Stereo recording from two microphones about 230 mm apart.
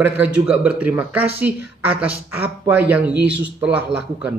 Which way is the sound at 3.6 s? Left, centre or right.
Centre.